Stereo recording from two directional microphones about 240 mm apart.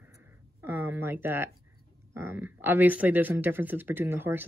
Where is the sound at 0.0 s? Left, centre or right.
Centre.